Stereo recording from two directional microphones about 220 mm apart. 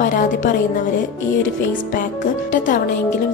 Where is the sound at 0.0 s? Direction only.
35° left (ahead or behind).